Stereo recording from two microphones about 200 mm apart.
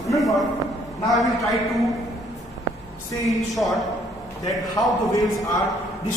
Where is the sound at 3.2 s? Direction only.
Centre (ahead or behind).